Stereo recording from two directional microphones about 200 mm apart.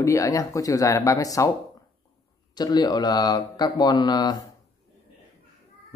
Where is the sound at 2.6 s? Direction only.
20° left (ahead or behind).